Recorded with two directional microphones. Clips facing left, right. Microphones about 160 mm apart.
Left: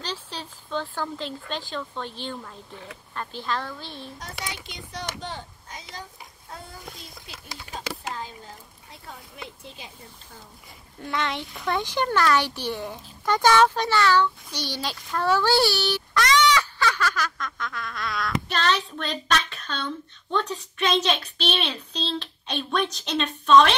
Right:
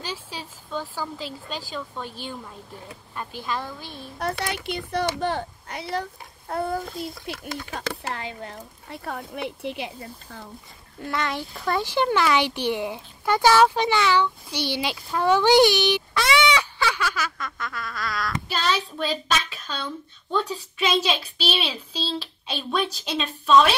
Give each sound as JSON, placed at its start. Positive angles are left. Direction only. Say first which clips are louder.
{"t": 0.0, "sound": "a sound", "louder": "even", "side_deg": -10}
{"t": 1.7, "sound": "speech", "louder": "left 1 dB", "side_deg": -5}
{"t": 4.2, "sound": "a child's voice", "louder": "right 13 dB", "side_deg": -65}
{"t": 11.0, "sound": "speech", "louder": "right 1 dB", "side_deg": 0}